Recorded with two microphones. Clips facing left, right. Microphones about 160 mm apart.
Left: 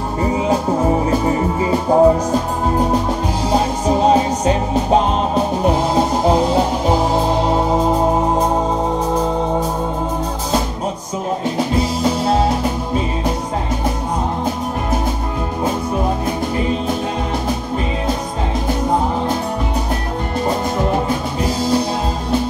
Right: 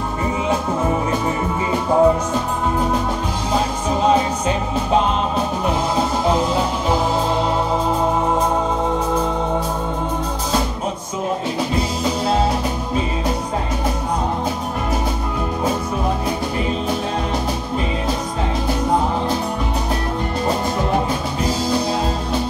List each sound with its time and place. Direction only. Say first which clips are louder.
0.2 s music: left 4 dB; 35° left (ahead or behind)
3.8 s music: left 3 dB; 40° left (ahead or behind)